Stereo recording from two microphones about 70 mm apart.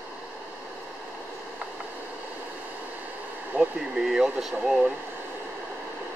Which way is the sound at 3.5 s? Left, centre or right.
Right.